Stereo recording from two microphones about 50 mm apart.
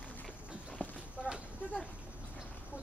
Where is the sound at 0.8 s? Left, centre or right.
Left.